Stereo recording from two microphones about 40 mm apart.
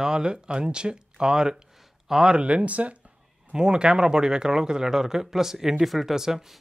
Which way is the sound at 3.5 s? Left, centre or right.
Right.